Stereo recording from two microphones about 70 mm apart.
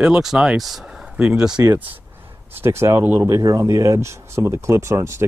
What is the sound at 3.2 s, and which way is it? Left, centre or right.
Speech, right.